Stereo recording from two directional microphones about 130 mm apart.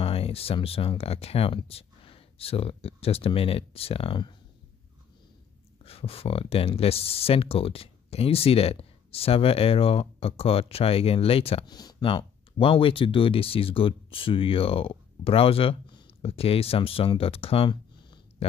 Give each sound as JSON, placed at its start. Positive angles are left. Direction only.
{"t": 0.0, "sound": "speech", "side_deg": 50}
{"t": 5.9, "sound": "speech", "side_deg": 50}
{"t": 11.6, "sound": "speech", "side_deg": 30}